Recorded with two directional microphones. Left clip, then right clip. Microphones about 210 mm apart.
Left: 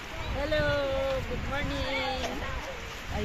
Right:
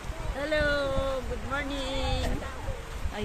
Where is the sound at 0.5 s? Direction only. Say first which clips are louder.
Right 1 dB; 15° right (ahead or behind).